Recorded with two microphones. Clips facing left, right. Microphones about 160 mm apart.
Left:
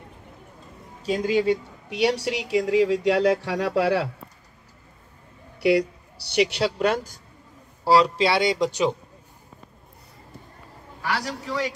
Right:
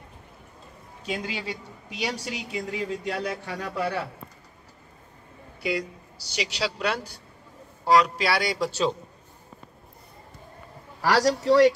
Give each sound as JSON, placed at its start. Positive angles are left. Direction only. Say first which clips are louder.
{"t": 1.0, "sound": "a woman's voice", "louder": "left 11 dB", "side_deg": 40}
{"t": 5.6, "sound": "speech", "louder": "left 9 dB", "side_deg": 70}
{"t": 7.8, "sound": "speech", "louder": "left 2 dB", "side_deg": 30}
{"t": 11.4, "sound": "speech", "louder": "right 13 dB", "side_deg": -70}